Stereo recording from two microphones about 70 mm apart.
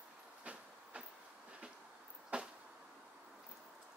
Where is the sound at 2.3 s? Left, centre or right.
Centre.